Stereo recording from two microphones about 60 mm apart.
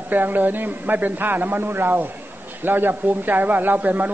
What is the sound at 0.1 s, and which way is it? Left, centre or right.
Speech, right.